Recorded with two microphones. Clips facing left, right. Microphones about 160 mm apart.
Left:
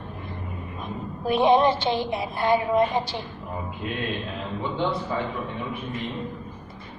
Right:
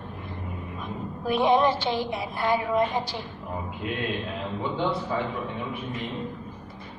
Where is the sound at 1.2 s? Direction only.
25° left (ahead or behind).